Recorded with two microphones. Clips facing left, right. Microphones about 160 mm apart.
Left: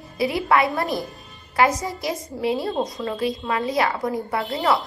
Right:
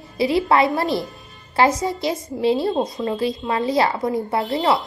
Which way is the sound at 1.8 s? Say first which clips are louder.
Right 4 dB; 20° right (ahead or behind).